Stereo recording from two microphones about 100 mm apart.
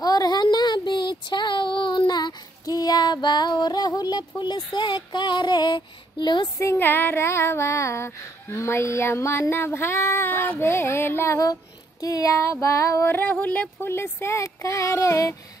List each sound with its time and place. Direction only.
0.0 s a sound: 40° left (ahead or behind)
4.4 s female singing: 45° left (ahead or behind)
6.6 s child singing: 25° left (ahead or behind)